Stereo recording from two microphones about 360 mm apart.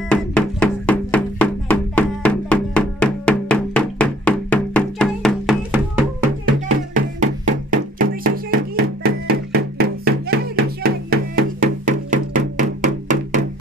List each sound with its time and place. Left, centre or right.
0.1 s music: centre
7.2 s music: right